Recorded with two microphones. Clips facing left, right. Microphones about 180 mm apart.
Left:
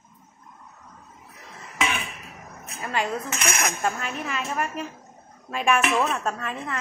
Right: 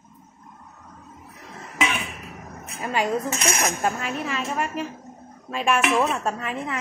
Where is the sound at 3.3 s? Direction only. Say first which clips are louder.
Right 3 dB; 35° right (ahead or behind).